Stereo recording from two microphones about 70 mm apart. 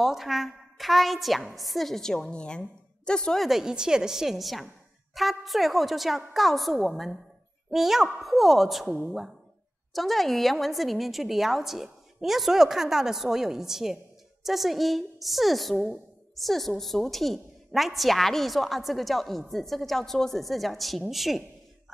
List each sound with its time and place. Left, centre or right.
0.0 s a woman's voice: centre
3.3 s a woman's voice: centre